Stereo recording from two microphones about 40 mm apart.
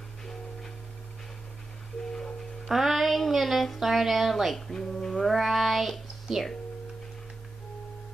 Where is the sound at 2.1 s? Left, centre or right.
Centre.